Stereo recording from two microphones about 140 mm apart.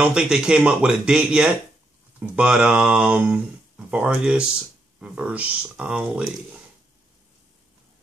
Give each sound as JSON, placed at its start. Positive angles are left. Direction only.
{"t": 0.0, "sound": "speech", "side_deg": -5}